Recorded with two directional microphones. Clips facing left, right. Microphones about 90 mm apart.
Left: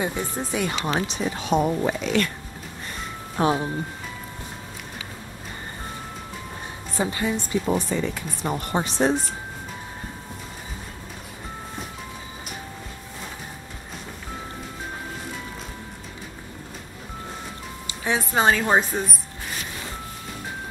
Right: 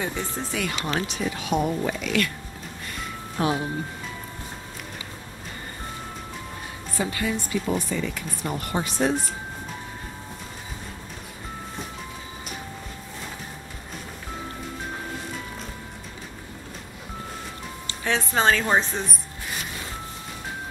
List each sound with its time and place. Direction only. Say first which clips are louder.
0.0 s speech: left 2 dB; 15° left (ahead or behind)
0.7 s speech: left 2 dB; 30° left (ahead or behind)
3.4 s speech: left 3 dB; 30° left (ahead or behind)
7.0 s speech: left 2 dB; 25° left (ahead or behind)
17.8 s speech: left 1 dB; 15° left (ahead or behind)